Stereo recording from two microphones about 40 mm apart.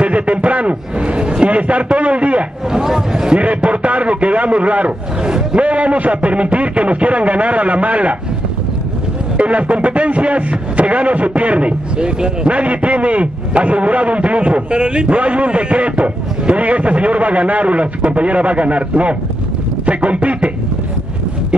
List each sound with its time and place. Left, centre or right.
0.0 s speech: right
2.7 s a sound: centre
3.3 s a man's voice: right
5.2 s speech: right
5.7 s speech: right
9.4 s speech: right